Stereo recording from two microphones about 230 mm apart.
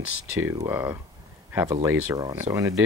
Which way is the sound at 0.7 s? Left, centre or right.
Centre.